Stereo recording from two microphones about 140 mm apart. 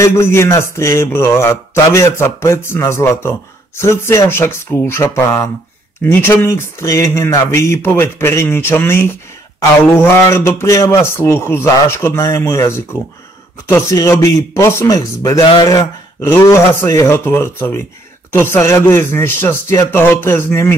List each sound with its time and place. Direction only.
0.0 s speech: 20° left (ahead or behind)